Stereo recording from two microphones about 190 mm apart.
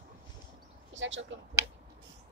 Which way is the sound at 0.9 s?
75° right (ahead or behind).